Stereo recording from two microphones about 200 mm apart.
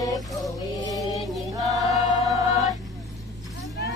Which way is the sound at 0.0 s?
20° left (ahead or behind).